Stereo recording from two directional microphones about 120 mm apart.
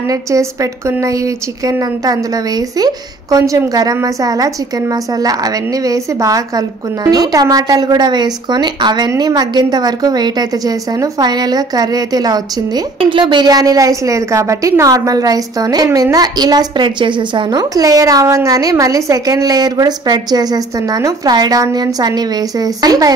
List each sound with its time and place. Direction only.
0.1 s a woman's voice: 25° right (ahead or behind)